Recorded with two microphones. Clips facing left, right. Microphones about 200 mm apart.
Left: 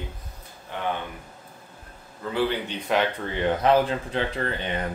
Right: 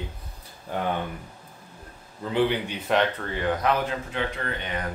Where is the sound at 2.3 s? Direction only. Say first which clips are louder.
Right 2 dB; 15° right (ahead or behind).